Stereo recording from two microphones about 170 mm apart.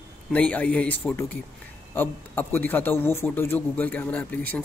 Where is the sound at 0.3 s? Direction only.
10° left (ahead or behind).